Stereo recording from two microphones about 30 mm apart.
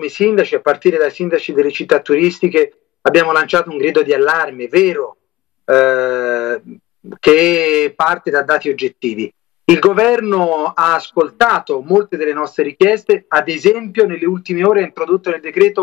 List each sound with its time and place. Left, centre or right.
0.0 s speech: centre
2.1 s speech: right
3.1 s speech: centre
5.7 s a sound: centre
7.1 s speech: right
12.4 s speech: right
13.1 s speech: centre
15.4 s speech: right